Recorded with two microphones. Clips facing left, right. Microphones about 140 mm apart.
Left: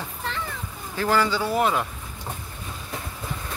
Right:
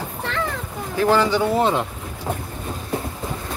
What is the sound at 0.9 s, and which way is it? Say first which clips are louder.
Speech: right 5 dB; 20° right (ahead or behind).